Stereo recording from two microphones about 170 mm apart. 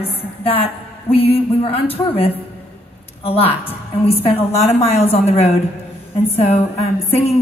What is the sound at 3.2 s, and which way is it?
A woman's voice, 35° left (ahead or behind).